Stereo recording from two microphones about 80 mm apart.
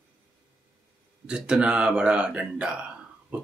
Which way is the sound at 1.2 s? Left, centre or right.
Centre.